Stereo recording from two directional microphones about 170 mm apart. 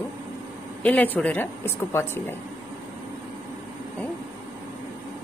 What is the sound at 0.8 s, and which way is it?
Speech, 10° left (ahead or behind).